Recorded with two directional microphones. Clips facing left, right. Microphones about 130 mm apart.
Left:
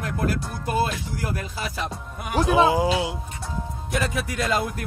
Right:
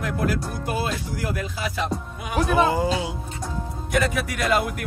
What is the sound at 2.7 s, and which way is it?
Speech, 10° left (ahead or behind).